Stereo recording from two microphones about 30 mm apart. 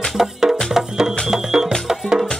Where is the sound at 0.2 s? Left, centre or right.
Centre.